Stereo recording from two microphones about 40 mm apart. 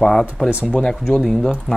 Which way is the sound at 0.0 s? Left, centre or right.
Centre.